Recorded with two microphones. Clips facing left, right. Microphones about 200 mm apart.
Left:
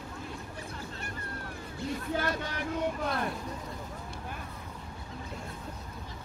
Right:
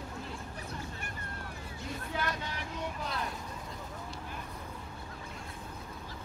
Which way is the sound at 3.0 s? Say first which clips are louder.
Left 5 dB; 55° left (ahead or behind).